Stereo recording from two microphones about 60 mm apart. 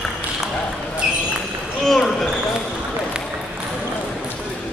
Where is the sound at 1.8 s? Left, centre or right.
Centre.